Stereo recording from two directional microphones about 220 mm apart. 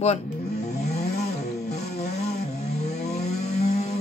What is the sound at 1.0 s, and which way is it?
Vehicle, 45° left (ahead or behind).